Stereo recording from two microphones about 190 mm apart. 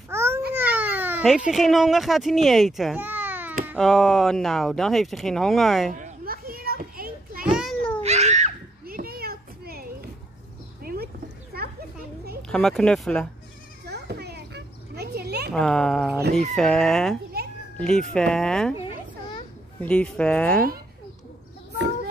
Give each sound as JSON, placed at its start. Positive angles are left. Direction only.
{"t": 0.1, "sound": "babbling", "side_deg": -15}
{"t": 0.5, "sound": "a sound", "side_deg": -10}
{"t": 3.7, "sound": "speech", "side_deg": 0}
{"t": 5.9, "sound": "children playing", "side_deg": -45}
{"t": 7.5, "sound": "cat", "side_deg": 0}
{"t": 8.0, "sound": "children playing", "side_deg": -35}
{"t": 10.8, "sound": "a sound", "side_deg": -55}
{"t": 12.4, "sound": "speech", "side_deg": 5}
{"t": 13.8, "sound": "children playing", "side_deg": -60}
{"t": 15.5, "sound": "speech", "side_deg": 5}
{"t": 18.8, "sound": "children playing", "side_deg": 30}
{"t": 19.8, "sound": "speech", "side_deg": 5}